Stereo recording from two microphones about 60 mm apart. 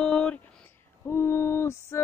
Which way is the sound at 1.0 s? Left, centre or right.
Left.